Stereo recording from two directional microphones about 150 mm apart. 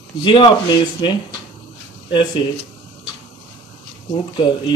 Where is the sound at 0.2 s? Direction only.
30° left (ahead or behind).